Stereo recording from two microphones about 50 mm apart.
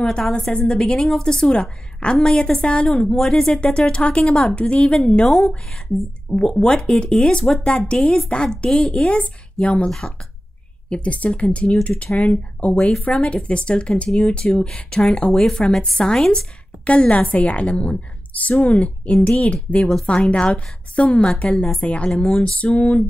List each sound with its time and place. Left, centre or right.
0.3 s a woman's voice: left
4.2 s speech: centre
4.6 s a woman's voice: left
5.2 s speech: centre
6.3 s a woman's voice: centre
9.8 s speech: centre
10.9 s a woman's voice: left
15.3 s a woman's voice: centre; by 19.1 s left
19.8 s speech: centre
20.1 s a woman's voice: left